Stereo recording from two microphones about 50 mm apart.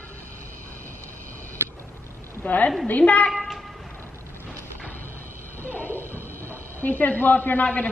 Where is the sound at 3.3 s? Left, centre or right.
Centre.